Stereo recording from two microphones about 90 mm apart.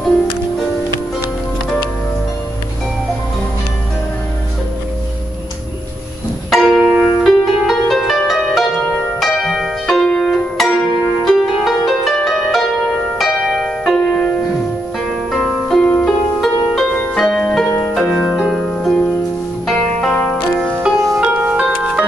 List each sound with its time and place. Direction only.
6.6 s music: centre (ahead or behind)
7.2 s music: centre (ahead or behind)
8.5 s harp: 5° left (ahead or behind)
15.0 s music: centre (ahead or behind)
17.6 s harp: 25° left (ahead or behind)
17.9 s music: 5° left (ahead or behind)
18.3 s harp: centre (ahead or behind)
19.6 s zither: centre (ahead or behind)
21.0 s music: centre (ahead or behind)
21.3 s music: 15° right (ahead or behind)